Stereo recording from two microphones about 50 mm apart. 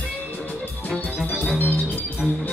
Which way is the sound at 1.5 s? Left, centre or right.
Left.